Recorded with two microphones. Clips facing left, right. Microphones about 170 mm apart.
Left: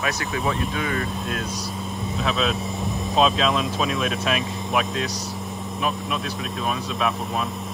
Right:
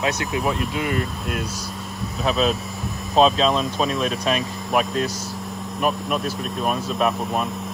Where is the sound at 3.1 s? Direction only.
35° right (ahead or behind).